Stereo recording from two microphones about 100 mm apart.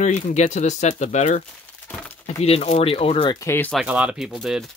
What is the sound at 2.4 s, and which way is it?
Speech, 85° left.